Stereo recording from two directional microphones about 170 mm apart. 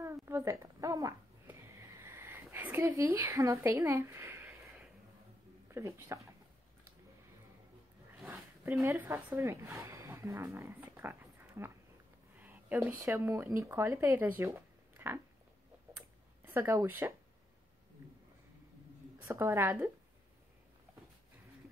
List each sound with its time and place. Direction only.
0.0 s a sound: 15° right (ahead or behind)
5.7 s speech: 15° right (ahead or behind)
8.2 s a sound: 10° right (ahead or behind)
8.8 s a woman's voice: 15° right (ahead or behind)
16.4 s a woman's voice: 15° right (ahead or behind)
19.2 s a woman's voice: 15° right (ahead or behind)